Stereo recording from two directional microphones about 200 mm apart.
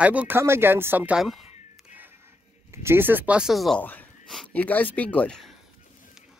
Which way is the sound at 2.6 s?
10° right (ahead or behind).